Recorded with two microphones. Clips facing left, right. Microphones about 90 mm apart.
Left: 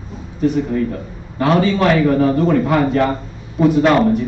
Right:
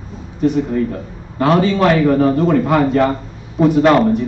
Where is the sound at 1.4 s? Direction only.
30° right (ahead or behind).